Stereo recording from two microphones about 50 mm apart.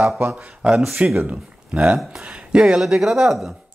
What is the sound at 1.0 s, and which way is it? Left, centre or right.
Speech, right.